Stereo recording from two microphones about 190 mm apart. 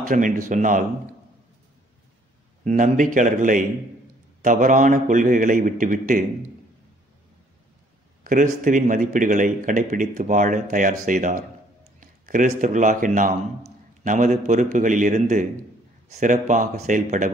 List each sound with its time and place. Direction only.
0.0 s speech: 45° right (ahead or behind)
2.6 s speech: 40° right (ahead or behind)
8.2 s a man's voice: 45° right (ahead or behind)